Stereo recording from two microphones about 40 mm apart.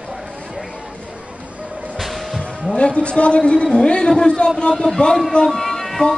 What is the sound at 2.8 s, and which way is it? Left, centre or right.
A man's voice, left.